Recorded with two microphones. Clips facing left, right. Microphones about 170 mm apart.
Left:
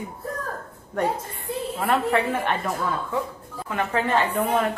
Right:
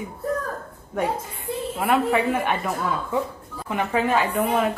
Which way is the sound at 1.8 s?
10° right (ahead or behind).